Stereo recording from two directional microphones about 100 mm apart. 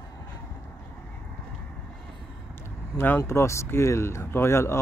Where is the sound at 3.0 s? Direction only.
25° left (ahead or behind).